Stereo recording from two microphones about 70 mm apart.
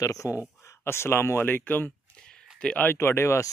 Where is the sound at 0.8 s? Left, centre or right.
Left.